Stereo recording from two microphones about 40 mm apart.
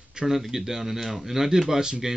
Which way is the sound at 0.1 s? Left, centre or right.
Centre.